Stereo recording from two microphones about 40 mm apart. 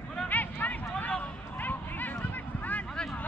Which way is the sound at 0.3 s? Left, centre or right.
Left.